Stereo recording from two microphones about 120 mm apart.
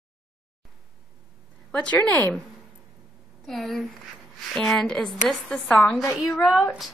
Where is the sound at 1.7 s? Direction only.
10° left (ahead or behind).